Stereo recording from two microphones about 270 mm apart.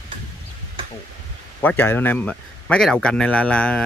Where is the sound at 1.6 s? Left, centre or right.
Centre.